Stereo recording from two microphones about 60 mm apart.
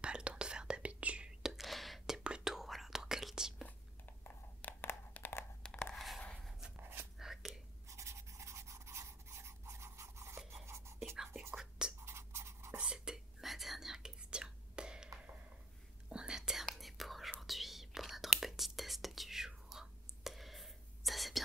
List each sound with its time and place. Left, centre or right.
0.0 s whispering: centre
1.4 s whispering: centre
2.1 s whispering: centre
3.6 s a sound: left
5.6 s a sound: centre
5.9 s a sound: centre
7.2 s whispering: centre
7.9 s a sound: right
11.5 s whispering: centre
12.0 s writing: right
12.7 s whispering: centre
16.1 s whispering: centre